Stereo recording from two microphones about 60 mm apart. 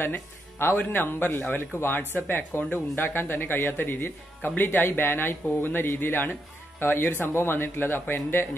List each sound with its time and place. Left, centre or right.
0.0 s speech: left